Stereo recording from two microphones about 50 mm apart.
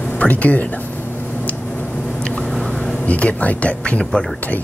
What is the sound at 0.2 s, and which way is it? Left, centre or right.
Speech, left.